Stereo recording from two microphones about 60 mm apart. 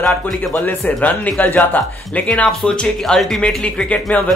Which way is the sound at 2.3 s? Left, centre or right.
Centre.